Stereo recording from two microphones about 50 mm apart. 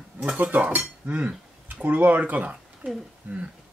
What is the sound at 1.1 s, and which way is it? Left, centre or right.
Cutlery, right.